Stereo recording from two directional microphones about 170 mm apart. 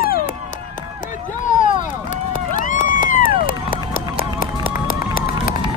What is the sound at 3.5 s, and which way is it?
Run, 55° left (ahead or behind).